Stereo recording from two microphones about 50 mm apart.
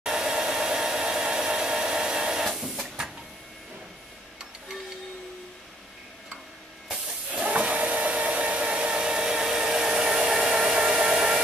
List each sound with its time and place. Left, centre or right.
0.0 s hair dryer: centre
7.4 s hair dryer: right; by 11.4 s centre